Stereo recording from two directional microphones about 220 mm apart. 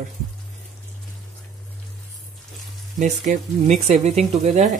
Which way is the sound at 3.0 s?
35° right (ahead or behind).